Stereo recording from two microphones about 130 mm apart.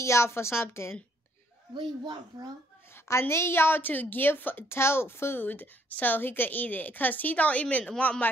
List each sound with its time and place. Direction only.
0.0 s a woman's voice: 20° left (ahead or behind)
1.7 s speech: 35° right (ahead or behind)
2.9 s a woman's voice: 20° left (ahead or behind)